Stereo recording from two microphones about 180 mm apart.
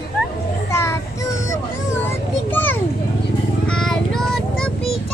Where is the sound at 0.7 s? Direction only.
15° left (ahead or behind).